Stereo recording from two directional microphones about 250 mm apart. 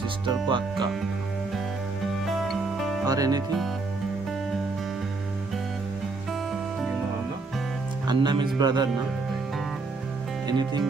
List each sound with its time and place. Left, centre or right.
0.3 s speech: centre
3.1 s speech: centre
8.1 s speech: centre
10.4 s music: centre